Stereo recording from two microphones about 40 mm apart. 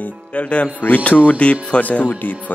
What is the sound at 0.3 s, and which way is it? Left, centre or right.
Speech, left.